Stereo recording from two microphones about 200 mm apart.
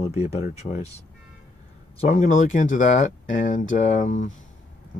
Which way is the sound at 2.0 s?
40° left (ahead or behind).